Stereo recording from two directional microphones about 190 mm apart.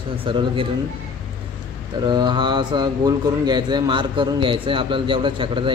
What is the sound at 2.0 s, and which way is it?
A man's voice, 25° right (ahead or behind).